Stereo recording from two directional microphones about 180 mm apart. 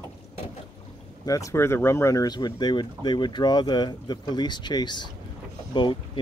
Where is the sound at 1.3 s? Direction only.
15° left (ahead or behind).